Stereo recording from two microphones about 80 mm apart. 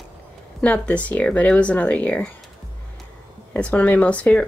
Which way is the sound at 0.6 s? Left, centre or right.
Centre.